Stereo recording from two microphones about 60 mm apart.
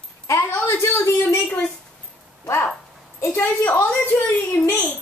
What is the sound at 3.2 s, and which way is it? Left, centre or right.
A woman's voice, left.